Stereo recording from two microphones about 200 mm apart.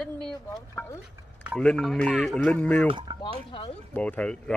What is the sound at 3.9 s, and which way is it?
Speech, 5° left (ahead or behind).